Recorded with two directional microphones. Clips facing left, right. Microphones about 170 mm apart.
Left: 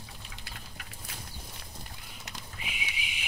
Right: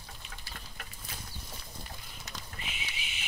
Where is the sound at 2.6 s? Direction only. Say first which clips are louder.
Left 5 dB; 10° left (ahead or behind).